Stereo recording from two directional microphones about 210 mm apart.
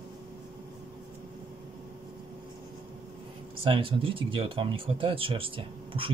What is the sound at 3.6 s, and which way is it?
Speech, 25° right (ahead or behind).